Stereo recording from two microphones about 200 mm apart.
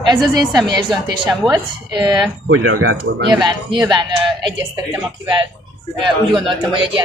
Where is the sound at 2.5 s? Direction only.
90° right.